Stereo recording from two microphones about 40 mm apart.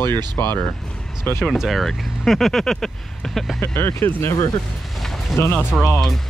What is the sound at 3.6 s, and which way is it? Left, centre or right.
Speech, left.